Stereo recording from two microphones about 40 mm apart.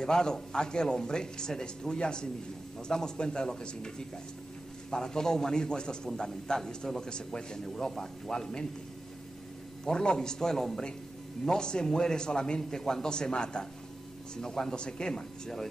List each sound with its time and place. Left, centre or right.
0.0 s a man's voice: centre
4.9 s a man's voice: centre
9.8 s a man's voice: centre